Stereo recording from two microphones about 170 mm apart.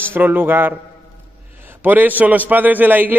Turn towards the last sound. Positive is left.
turn(degrees=-10)  # may be behind; listen again after turning